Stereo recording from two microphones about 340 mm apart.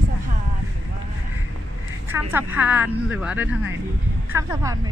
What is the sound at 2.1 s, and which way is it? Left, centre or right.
Speech, centre.